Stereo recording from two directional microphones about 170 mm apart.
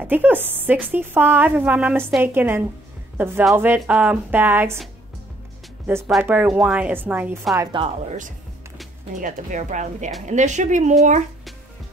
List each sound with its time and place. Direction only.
0.0 s a woman's voice: 10° right (ahead or behind)
5.9 s a woman's voice: 5° right (ahead or behind)
9.1 s speech: 50° right (ahead or behind)